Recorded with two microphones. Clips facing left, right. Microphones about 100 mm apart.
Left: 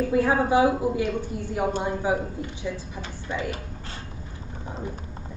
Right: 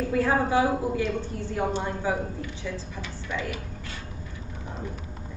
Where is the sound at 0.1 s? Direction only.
15° left (ahead or behind).